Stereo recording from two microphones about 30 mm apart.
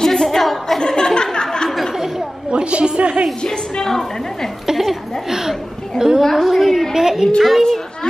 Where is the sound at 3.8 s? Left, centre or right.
Centre.